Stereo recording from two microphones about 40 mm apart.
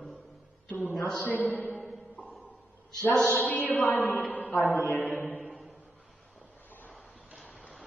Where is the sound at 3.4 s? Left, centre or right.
Left.